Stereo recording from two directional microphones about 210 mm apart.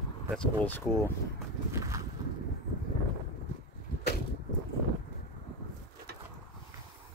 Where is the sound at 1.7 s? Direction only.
15° right (ahead or behind).